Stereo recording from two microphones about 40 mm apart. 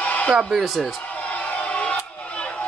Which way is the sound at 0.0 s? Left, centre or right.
Left.